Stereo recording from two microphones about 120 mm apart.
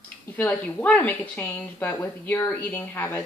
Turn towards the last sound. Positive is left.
turn(degrees=15)  # may be behind; listen again after turning